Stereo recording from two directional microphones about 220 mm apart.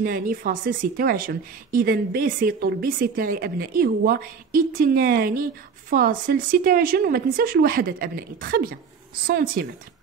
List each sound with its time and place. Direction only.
0.0 s a woman's voice: 40° right (ahead or behind)